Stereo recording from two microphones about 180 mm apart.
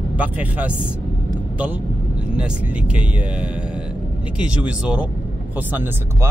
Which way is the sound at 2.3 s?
5° right (ahead or behind).